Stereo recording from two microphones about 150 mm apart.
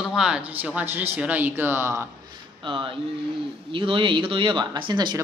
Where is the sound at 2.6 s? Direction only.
35° right (ahead or behind).